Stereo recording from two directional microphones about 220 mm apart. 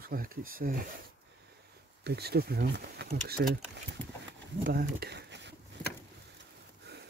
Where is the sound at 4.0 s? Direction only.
10° left (ahead or behind).